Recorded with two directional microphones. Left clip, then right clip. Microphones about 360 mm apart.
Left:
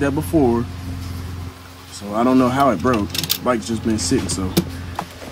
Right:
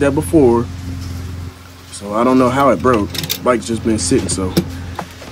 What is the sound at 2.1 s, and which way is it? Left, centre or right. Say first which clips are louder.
Speech: right 4 dB; centre.